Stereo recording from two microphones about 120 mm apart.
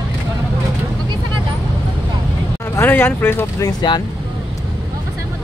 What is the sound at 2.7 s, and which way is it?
Speech, 15° left (ahead or behind).